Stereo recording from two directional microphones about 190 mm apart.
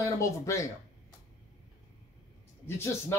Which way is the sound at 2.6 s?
15° left (ahead or behind).